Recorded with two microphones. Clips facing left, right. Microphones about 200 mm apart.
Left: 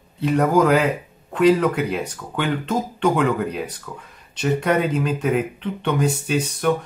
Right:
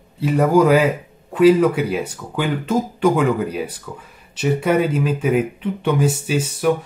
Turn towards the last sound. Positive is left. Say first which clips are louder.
# right 2 dB
turn(degrees=-5)  # may be behind; listen again after turning